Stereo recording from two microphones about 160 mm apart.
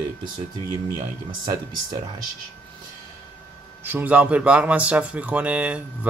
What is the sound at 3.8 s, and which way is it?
Speech, 10° right (ahead or behind).